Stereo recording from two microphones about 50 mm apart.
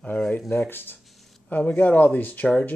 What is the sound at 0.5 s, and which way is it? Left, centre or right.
Speech, left.